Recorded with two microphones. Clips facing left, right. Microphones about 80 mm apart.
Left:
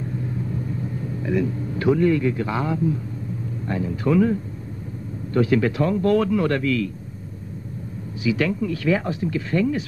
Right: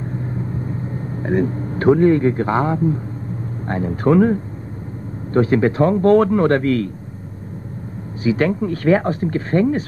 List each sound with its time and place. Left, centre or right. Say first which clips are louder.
0.1 s vehicle: right 2 dB; right
3.6 s speech: right 5 dB; right
8.2 s speech: right 4 dB; right